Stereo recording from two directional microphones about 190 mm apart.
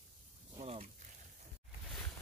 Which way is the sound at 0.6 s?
30° right (ahead or behind).